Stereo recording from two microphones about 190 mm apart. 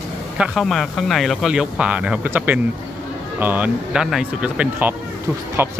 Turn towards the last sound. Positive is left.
turn(degrees=-10)  # may be behind; listen again after turning